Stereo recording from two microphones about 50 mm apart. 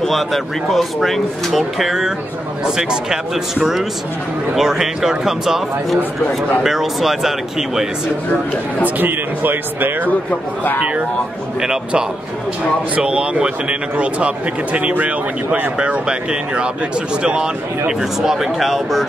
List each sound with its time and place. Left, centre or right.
0.0 s speech: centre
4.6 s speech: centre
8.8 s speech: right
11.6 s a man's voice: centre